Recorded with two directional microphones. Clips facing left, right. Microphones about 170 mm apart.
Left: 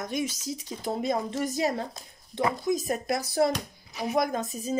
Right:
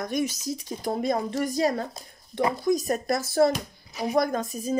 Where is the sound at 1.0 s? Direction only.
20° left (ahead or behind).